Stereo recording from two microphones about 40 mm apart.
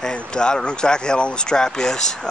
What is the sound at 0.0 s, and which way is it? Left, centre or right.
Speech, left.